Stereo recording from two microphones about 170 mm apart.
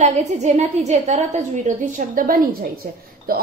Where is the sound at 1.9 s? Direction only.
55° right (ahead or behind).